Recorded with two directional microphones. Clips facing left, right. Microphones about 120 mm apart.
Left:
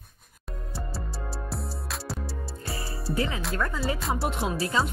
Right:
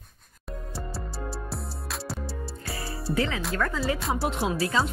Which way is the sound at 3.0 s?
Centre (ahead or behind).